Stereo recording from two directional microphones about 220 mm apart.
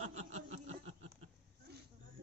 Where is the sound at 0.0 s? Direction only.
30° right (ahead or behind).